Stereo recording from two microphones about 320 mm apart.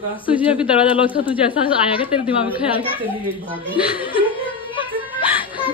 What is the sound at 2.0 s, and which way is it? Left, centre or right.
Speech, centre.